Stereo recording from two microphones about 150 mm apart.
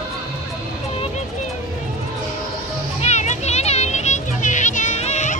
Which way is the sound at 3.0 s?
50° left (ahead or behind).